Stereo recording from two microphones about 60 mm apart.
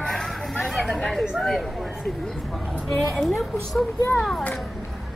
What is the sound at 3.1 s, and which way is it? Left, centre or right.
Speech, centre.